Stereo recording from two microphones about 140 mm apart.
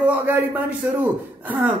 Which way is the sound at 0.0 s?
10° right (ahead or behind).